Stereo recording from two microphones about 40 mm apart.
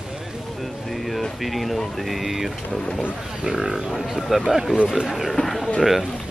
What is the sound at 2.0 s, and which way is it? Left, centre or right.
Speech, centre.